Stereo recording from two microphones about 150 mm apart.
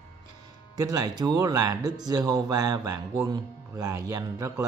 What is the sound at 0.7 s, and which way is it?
Speech, 25° right (ahead or behind).